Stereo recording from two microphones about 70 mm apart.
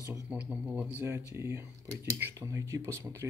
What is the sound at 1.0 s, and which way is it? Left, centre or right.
Speech, right.